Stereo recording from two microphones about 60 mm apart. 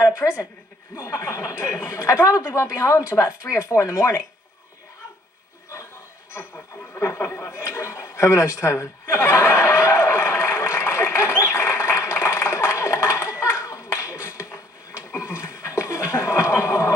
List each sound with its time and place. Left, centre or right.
0.0 s a sound: left
0.9 s speech: left
7.0 s speech: left
7.6 s chuckle: left